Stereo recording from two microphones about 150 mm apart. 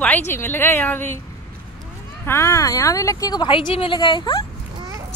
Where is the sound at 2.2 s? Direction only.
15° left (ahead or behind).